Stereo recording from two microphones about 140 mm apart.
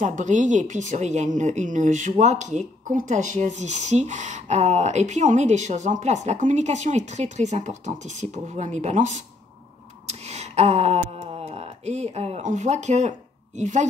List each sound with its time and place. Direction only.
0.0 s speech: 60° right (ahead or behind)